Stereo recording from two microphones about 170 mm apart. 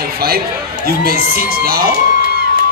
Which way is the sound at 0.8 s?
60° right (ahead or behind).